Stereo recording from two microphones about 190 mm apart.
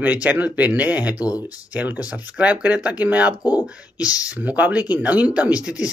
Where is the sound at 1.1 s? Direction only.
20° left (ahead or behind).